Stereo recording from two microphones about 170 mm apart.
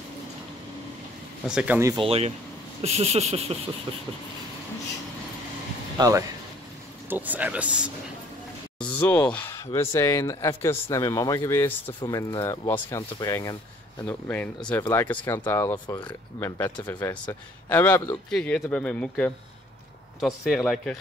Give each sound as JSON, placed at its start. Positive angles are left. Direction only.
{"t": 1.5, "sound": "speech", "side_deg": -5}
{"t": 2.0, "sound": "speech", "side_deg": -35}
{"t": 5.9, "sound": "speech", "side_deg": -20}
{"t": 7.1, "sound": "speech", "side_deg": -10}
{"t": 8.7, "sound": "speech", "side_deg": 10}
{"t": 12.0, "sound": "speech", "side_deg": 25}